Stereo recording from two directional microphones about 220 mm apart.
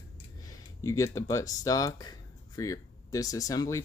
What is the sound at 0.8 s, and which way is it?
Speech, 15° left (ahead or behind).